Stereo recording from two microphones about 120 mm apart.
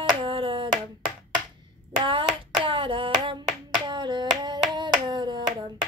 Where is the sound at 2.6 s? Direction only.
45° right (ahead or behind).